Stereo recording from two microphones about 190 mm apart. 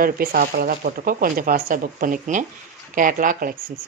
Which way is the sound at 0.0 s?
50° right (ahead or behind).